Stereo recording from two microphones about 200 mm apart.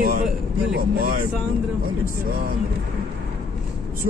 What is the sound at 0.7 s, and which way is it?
Speech, 50° right (ahead or behind).